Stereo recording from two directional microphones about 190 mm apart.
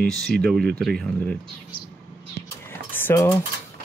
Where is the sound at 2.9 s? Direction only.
10° left (ahead or behind).